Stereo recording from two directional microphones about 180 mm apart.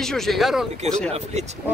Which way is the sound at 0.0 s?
Centre (ahead or behind).